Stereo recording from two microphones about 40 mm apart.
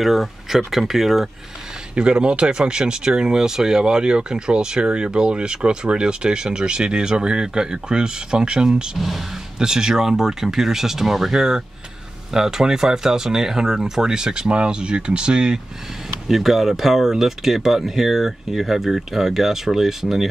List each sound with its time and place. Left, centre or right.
0.0 s speech: centre
2.0 s speech: right
16.3 s speech: centre